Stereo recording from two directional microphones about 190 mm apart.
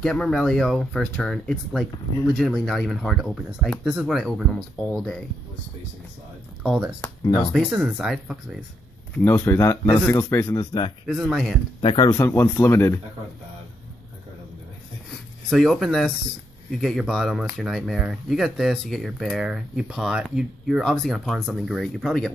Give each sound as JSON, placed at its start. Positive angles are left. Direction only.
{"t": 0.0, "sound": "speech", "side_deg": 5}
{"t": 6.6, "sound": "speech", "side_deg": -5}
{"t": 7.0, "sound": "speech", "side_deg": 20}
{"t": 7.5, "sound": "speech", "side_deg": -5}
{"t": 9.1, "sound": "speech", "side_deg": 10}
{"t": 11.1, "sound": "speech", "side_deg": 0}
{"t": 11.8, "sound": "speech", "side_deg": 25}
{"t": 12.1, "sound": "speech", "side_deg": 15}
{"t": 15.5, "sound": "speech", "side_deg": 0}